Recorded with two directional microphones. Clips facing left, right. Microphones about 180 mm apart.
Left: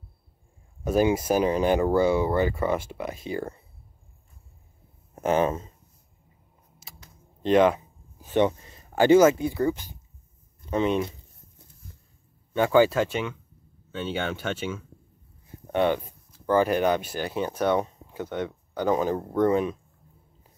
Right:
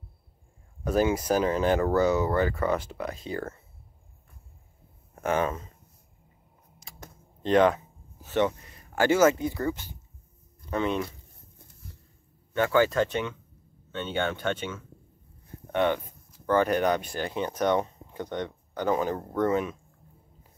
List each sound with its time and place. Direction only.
0.8 s speech: 10° left (ahead or behind)
5.1 s speech: 25° left (ahead or behind)
7.4 s speech: 15° left (ahead or behind)
12.5 s speech: 15° left (ahead or behind)